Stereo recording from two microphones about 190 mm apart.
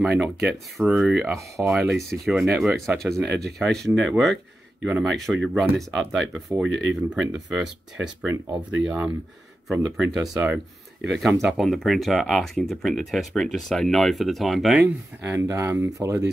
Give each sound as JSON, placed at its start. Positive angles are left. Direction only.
{"t": 0.0, "sound": "speech", "side_deg": -5}
{"t": 6.7, "sound": "speech", "side_deg": -75}
{"t": 7.2, "sound": "speech", "side_deg": -5}
{"t": 15.2, "sound": "speech", "side_deg": -15}